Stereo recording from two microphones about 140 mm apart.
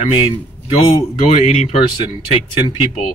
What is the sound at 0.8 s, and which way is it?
Speech, 50° left (ahead or behind).